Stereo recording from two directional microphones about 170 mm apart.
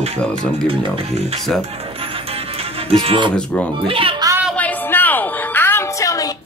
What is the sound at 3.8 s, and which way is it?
Speech, 30° right (ahead or behind).